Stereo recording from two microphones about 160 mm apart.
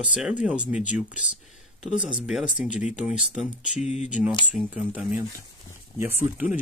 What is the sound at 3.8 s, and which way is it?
Speech, 45° left (ahead or behind).